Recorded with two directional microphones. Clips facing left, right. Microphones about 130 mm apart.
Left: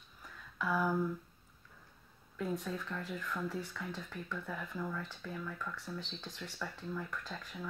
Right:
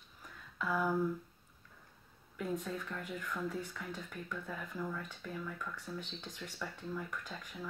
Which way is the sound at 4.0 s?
10° right (ahead or behind).